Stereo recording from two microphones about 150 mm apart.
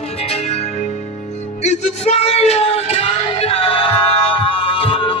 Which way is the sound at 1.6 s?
50° left (ahead or behind).